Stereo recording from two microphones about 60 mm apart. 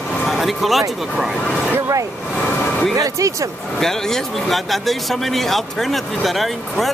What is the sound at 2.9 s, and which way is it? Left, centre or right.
Speech, right.